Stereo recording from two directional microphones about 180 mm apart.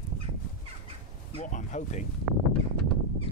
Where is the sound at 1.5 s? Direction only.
40° left (ahead or behind).